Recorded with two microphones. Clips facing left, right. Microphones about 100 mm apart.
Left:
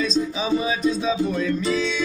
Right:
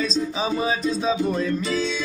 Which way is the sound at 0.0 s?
35° right (ahead or behind).